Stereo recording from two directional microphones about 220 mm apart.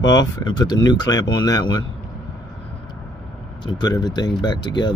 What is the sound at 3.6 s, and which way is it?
Speech, 20° left (ahead or behind).